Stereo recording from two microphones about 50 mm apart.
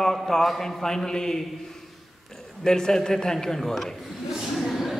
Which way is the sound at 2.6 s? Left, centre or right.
Centre.